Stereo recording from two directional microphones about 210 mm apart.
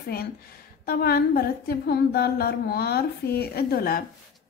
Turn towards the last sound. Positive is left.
turn(degrees=45)  # may be behind; listen again after turning